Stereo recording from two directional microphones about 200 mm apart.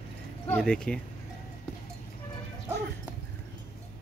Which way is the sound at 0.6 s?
5° left (ahead or behind).